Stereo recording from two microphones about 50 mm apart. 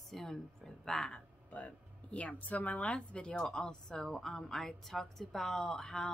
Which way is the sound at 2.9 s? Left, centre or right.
Centre.